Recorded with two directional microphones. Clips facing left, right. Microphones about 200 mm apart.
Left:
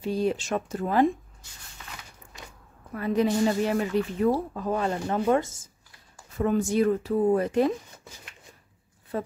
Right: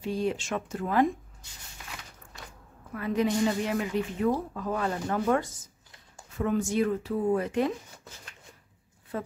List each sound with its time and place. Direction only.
0.0 s speech: 35° left (ahead or behind)
2.9 s speech: 35° left (ahead or behind)
6.3 s speech: 35° left (ahead or behind)
9.1 s speech: 35° left (ahead or behind)